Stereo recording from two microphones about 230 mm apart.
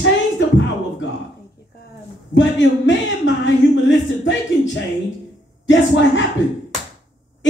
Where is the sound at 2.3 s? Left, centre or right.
Left.